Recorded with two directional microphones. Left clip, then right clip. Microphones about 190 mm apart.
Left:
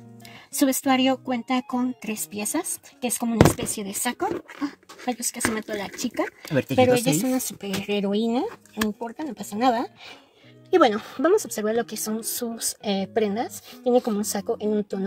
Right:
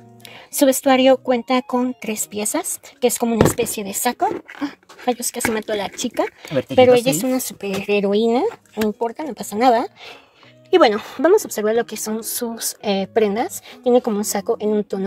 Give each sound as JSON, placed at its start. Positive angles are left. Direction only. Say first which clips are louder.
{"t": 0.5, "sound": "a woman's voice", "louder": "right 7 dB", "side_deg": -25}